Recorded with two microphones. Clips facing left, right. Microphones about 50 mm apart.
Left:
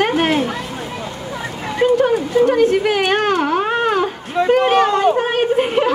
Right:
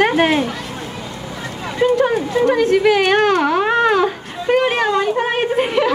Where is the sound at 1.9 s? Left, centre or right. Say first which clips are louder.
Left 1 dB; right.